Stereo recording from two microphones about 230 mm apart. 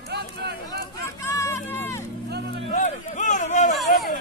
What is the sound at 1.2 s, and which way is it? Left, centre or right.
Hubbub, centre.